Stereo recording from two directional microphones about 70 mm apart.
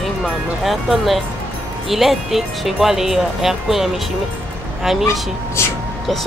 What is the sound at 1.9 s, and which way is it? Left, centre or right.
Speech, centre.